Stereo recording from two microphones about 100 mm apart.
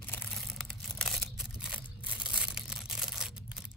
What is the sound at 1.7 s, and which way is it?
Single-lens reflex camera, 5° right (ahead or behind).